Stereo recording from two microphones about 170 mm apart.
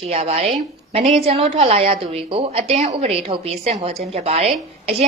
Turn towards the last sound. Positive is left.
turn(degrees=-40)  # may be behind; listen again after turning